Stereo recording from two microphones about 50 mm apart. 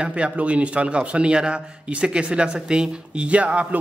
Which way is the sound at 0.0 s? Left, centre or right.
Right.